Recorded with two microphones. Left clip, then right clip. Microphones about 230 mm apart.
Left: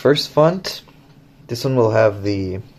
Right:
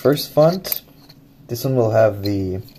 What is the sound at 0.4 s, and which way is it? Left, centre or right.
Speech, centre.